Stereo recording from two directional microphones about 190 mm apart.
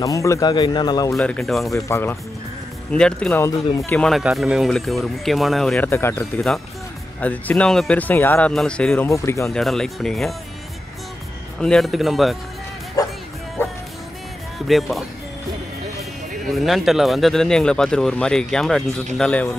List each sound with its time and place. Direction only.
0.0 s speech: 15° left (ahead or behind)
1.1 s speech: 5° left (ahead or behind)
1.7 s speech: 15° left (ahead or behind)
5.9 s speech: 10° left (ahead or behind)
9.5 s speech: centre (ahead or behind)
11.6 s speech: centre (ahead or behind)
13.0 s music: 20° left (ahead or behind)
14.7 s speech: centre (ahead or behind)
16.4 s speech: centre (ahead or behind)